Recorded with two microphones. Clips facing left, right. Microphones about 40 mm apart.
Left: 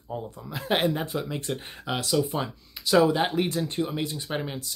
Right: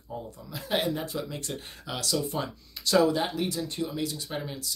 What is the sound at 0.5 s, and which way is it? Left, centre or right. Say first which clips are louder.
Speech: left 4 dB; left.